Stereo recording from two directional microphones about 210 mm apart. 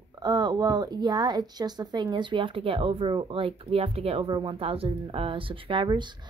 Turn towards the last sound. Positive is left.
turn(degrees=-20)  # may be behind; listen again after turning